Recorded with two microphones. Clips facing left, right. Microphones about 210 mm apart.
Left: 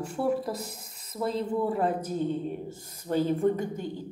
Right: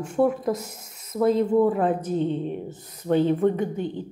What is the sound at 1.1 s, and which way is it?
Speech, 55° right (ahead or behind).